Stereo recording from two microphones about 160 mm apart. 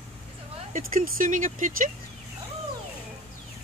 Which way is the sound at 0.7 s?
60° right (ahead or behind).